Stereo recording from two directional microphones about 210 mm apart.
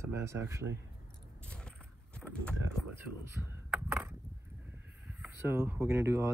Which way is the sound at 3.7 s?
10° right (ahead or behind).